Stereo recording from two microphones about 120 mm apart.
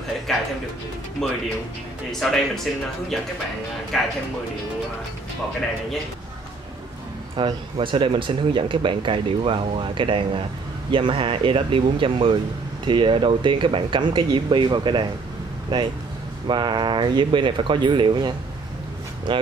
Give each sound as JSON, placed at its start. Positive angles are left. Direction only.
{"t": 0.3, "sound": "music", "side_deg": 5}
{"t": 1.2, "sound": "speech", "side_deg": 5}
{"t": 7.3, "sound": "speech", "side_deg": -45}